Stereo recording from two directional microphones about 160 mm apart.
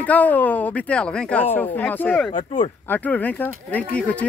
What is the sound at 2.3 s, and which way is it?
Speech, 50° left (ahead or behind).